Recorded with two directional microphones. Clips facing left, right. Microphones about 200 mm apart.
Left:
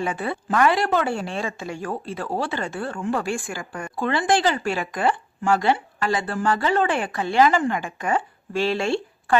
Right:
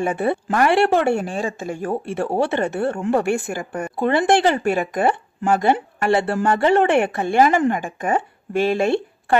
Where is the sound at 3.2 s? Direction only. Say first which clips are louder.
Right 6 dB; 65° right (ahead or behind).